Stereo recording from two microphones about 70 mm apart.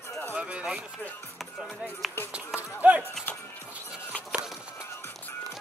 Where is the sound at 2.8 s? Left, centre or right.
Centre.